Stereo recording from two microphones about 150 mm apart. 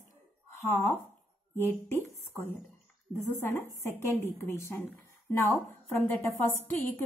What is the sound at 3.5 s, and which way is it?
A woman's voice, 15° left (ahead or behind).